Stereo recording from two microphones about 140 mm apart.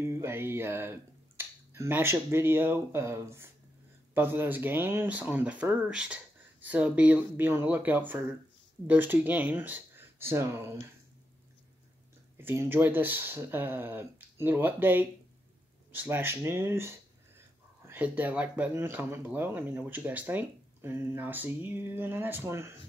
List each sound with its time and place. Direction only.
0.0 s speech: 15° right (ahead or behind)
12.4 s speech: 15° right (ahead or behind)